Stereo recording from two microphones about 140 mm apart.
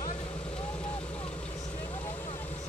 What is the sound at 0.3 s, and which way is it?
Vehicle, 40° left (ahead or behind).